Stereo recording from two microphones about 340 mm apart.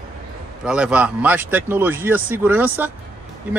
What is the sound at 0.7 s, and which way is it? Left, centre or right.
Speech, centre.